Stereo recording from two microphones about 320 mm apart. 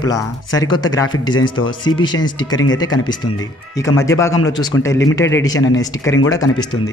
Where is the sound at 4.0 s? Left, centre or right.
Centre.